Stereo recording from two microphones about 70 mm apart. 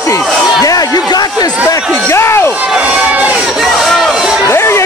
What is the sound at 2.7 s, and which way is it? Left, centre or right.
Run, centre.